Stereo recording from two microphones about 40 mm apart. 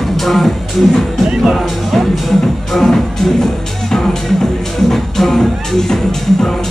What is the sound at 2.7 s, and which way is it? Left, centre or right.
Speech, centre.